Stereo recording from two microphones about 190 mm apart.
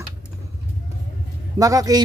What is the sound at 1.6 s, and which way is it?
Speech, 20° right (ahead or behind).